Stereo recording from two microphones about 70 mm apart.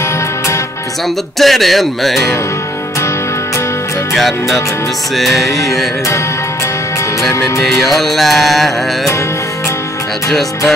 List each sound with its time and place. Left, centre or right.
1.4 s music: centre
4.1 s music: centre
7.3 s music: left
7.6 s music: centre